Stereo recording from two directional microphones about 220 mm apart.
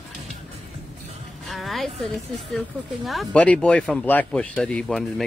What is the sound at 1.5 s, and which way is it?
A woman's voice, centre (ahead or behind).